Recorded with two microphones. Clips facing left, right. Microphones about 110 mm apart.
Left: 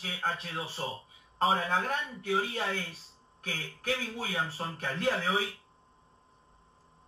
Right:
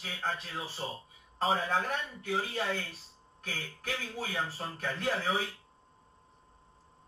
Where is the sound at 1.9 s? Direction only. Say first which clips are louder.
Left 2 dB; 30° left (ahead or behind).